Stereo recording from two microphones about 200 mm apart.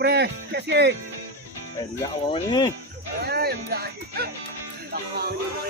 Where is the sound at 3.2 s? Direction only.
50° right (ahead or behind).